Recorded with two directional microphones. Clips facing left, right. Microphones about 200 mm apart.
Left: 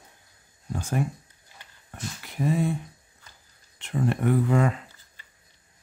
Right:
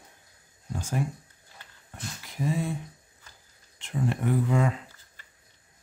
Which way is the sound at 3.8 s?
60° left (ahead or behind).